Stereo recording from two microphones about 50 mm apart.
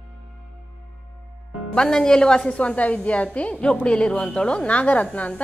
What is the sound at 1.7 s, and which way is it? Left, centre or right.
A woman's voice, centre.